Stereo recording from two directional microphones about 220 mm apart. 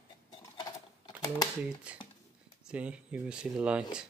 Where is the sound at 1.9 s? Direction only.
5° right (ahead or behind).